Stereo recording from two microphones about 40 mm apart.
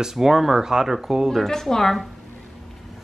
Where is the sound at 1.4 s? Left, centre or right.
Centre.